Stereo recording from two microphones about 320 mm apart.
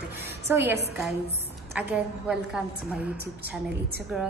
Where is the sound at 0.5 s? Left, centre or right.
Centre.